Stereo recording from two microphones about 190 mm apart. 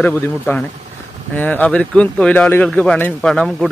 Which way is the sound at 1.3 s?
10° left (ahead or behind).